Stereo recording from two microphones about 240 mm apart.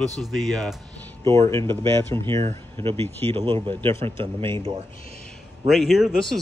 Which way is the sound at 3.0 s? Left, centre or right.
Centre.